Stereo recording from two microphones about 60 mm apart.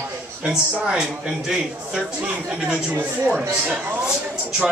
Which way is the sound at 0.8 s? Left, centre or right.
Centre.